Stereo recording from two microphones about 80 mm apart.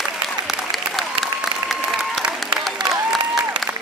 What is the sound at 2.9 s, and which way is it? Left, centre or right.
Applause, centre.